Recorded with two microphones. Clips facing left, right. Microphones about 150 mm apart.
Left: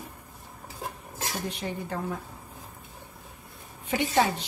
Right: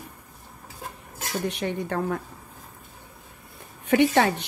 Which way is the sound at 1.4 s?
70° right (ahead or behind).